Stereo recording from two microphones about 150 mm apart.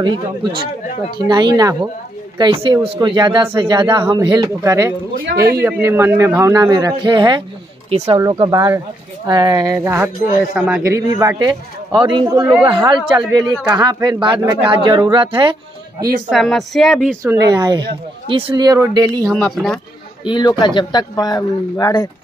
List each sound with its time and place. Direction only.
0.0 s speech: 35° right (ahead or behind)
7.9 s speech: 45° right (ahead or behind)
8.2 s a man's voice: 30° right (ahead or behind)
16.3 s speech: centre (ahead or behind)
17.2 s speech: 20° right (ahead or behind)
19.3 s speech: 5° left (ahead or behind)
20.2 s speech: 30° left (ahead or behind)